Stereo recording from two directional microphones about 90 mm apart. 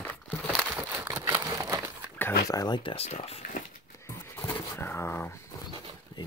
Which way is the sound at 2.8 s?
90° left.